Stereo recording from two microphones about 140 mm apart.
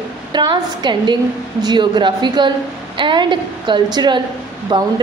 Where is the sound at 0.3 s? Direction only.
35° right (ahead or behind).